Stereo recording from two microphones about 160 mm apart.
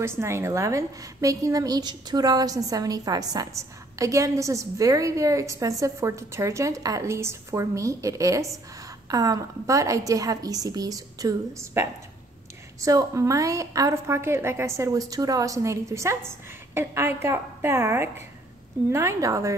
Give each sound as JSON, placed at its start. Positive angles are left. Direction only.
{"t": 0.0, "sound": "a woman's voice", "side_deg": -15}